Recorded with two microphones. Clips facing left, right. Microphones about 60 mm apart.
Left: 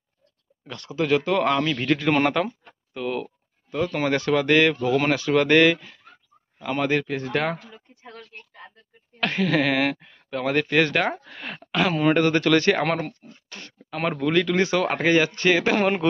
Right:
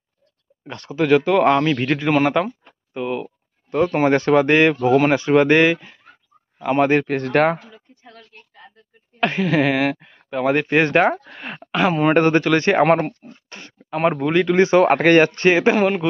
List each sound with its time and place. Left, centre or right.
0.7 s speech: right
2.1 s speech: centre
2.9 s a sound: centre
3.7 s speech: right
7.1 s speech: right
9.2 s speech: centre
12.1 s speech: right
12.4 s speech: right
12.9 s speech: right
13.5 s speech: right
14.9 s speech: right
15.8 s speech: centre